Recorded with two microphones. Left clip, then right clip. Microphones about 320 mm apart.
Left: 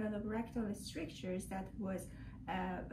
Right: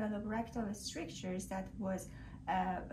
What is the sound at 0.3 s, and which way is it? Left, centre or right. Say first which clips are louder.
Speech: right 2 dB; centre.